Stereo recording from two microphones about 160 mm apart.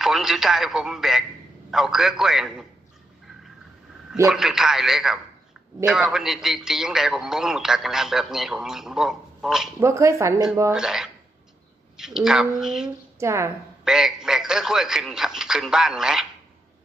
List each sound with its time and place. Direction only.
0.0 s a man's voice: centre (ahead or behind)
4.3 s a man's voice: 5° right (ahead or behind)
9.8 s speech: 20° right (ahead or behind)
10.7 s a man's voice: 5° right (ahead or behind)
13.2 s speech: 15° right (ahead or behind)
13.8 s a man's voice: 5° right (ahead or behind)